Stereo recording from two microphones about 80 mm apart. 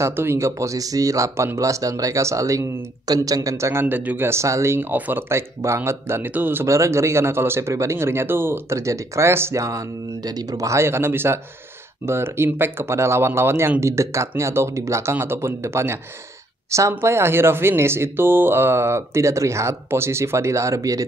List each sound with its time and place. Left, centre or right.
0.1 s speech: right
3.8 s speech: right
4.3 s speech: right
5.3 s speech: right
10.2 s speech: right
17.0 s speech: right